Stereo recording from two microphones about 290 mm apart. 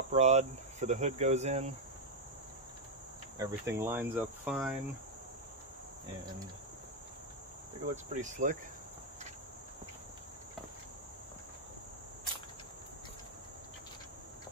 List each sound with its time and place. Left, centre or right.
0.1 s cricket: right
3.3 s cricket: centre
7.9 s cricket: right